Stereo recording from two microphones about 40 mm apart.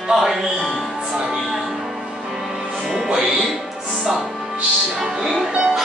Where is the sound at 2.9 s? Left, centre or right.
Centre.